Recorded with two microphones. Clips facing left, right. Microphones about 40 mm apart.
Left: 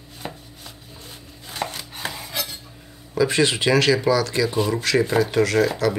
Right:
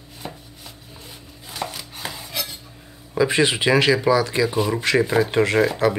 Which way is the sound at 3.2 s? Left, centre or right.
Centre.